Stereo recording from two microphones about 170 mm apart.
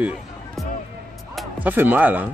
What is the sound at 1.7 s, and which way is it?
Speech, 10° right (ahead or behind).